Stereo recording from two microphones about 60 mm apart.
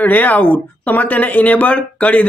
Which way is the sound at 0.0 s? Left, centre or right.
Left.